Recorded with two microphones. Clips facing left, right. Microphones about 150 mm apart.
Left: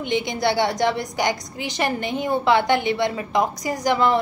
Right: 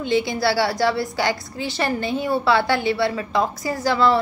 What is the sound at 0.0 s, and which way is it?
A woman's voice, 20° left (ahead or behind).